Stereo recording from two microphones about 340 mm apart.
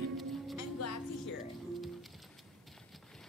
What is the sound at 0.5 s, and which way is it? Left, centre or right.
Music, left.